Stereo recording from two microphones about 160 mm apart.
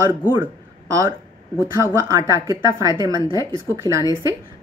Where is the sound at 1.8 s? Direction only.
20° right (ahead or behind).